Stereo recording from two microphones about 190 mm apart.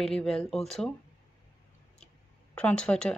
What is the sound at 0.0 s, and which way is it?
Speech, centre (ahead or behind).